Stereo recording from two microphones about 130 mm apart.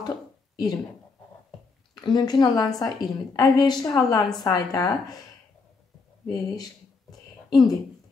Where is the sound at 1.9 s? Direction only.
35° left (ahead or behind).